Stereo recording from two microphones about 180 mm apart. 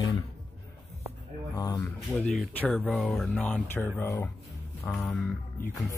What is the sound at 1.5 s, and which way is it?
Speech, 20° left (ahead or behind).